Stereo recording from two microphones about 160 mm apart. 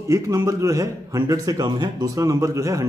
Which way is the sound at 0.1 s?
20° right (ahead or behind).